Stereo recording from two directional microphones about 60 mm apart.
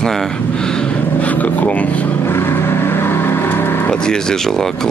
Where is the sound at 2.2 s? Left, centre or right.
Left.